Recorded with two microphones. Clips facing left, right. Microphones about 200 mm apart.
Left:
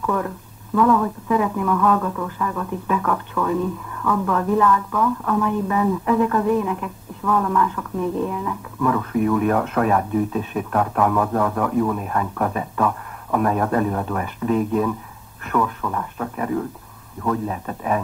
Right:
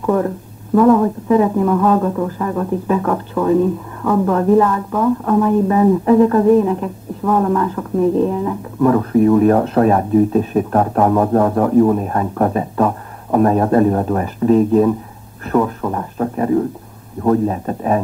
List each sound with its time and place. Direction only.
0.0 s speech: 35° right (ahead or behind)